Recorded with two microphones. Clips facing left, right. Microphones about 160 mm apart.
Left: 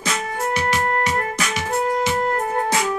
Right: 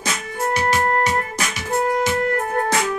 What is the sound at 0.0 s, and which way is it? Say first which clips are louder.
Music: left 1 dB; 35° right (ahead or behind).